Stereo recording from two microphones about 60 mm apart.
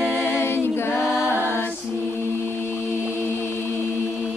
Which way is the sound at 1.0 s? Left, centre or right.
Centre.